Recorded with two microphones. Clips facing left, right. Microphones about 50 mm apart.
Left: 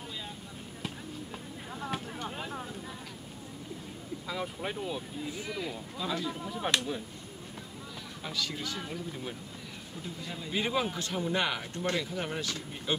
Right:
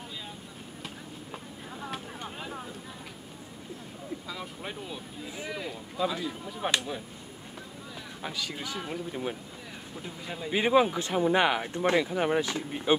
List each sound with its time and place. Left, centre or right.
0.8 s fireworks: centre
2.2 s a sound: centre
4.3 s speech: centre
5.3 s speech: centre
8.2 s speech: centre
10.0 s speech: centre